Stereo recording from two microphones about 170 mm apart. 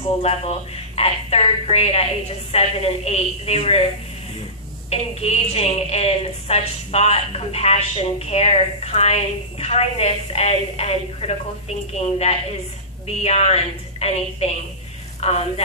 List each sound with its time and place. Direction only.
0.2 s a woman's voice: 35° left (ahead or behind)
4.8 s a woman's voice: 35° left (ahead or behind)
13.0 s a woman's voice: 40° left (ahead or behind)